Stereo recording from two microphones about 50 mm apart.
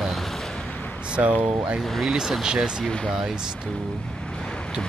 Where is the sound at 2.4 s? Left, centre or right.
Centre.